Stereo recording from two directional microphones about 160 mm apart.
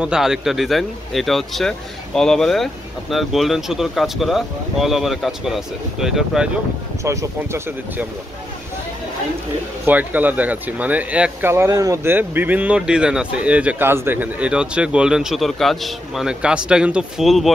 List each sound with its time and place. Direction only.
0.0 s speech: 5° right (ahead or behind)
7.0 s speech: 20° right (ahead or behind)
9.8 s speech: 10° right (ahead or behind)